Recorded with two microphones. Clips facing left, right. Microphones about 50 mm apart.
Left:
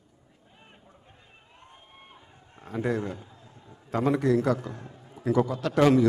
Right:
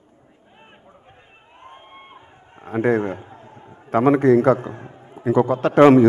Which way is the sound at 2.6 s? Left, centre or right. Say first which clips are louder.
Right 9 dB; right.